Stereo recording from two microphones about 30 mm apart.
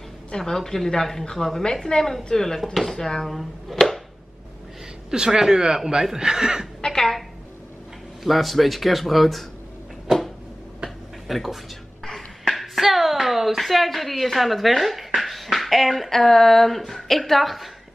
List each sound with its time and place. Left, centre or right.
0.4 s a woman's voice: centre
2.6 s speech: centre
3.0 s a woman's voice: centre
3.3 s speech: centre
5.1 s speech: right
7.0 s a woman's voice: centre
10.1 s a sound: right
11.2 s speech: centre
12.0 s a sound: centre
12.5 s speech: centre
15.1 s beatboxing: centre
16.1 s a woman's voice: centre